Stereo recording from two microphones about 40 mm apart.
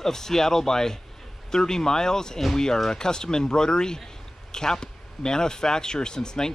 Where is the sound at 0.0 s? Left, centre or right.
Centre.